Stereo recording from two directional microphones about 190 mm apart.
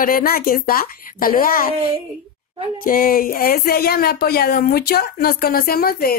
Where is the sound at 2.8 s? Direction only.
50° left (ahead or behind).